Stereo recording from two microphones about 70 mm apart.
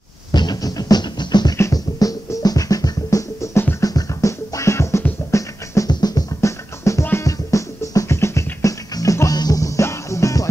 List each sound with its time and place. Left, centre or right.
0.3 s music: left
1.6 s music: left
5.9 s music: left
6.4 s music: left
9.8 s music: left